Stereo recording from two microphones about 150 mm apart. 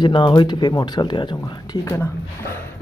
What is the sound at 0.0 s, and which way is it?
Speech, 30° left (ahead or behind).